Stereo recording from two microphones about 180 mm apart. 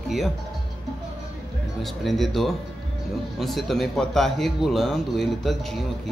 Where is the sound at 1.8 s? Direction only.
Centre (ahead or behind).